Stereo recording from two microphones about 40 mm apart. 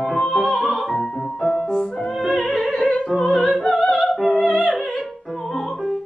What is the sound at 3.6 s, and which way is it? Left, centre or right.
Opera, centre.